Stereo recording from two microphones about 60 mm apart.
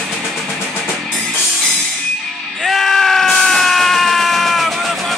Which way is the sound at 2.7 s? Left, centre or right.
Centre.